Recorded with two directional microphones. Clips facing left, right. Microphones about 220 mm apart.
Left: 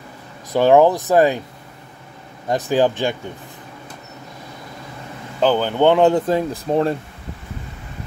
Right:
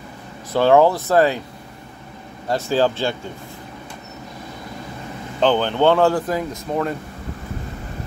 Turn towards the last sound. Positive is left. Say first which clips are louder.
# left 4 dB
turn(degrees=30)  # may be behind; listen again after turning